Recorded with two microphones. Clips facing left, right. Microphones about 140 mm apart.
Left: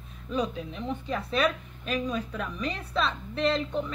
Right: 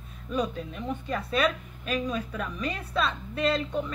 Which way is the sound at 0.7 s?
5° right (ahead or behind).